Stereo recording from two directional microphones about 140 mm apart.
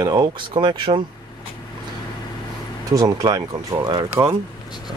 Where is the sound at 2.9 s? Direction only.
25° right (ahead or behind).